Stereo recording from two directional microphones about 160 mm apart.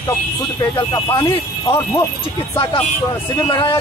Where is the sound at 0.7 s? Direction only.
25° left (ahead or behind).